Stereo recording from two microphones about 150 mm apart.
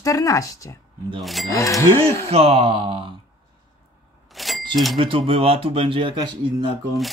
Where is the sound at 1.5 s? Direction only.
20° left (ahead or behind).